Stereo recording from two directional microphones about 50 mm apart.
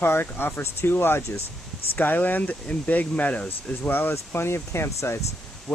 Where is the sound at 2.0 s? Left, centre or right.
Left.